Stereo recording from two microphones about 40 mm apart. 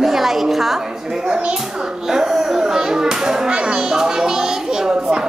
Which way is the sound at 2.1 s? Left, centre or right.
Centre.